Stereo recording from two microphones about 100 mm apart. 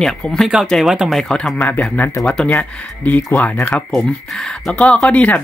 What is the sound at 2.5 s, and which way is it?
Speech, 15° left (ahead or behind).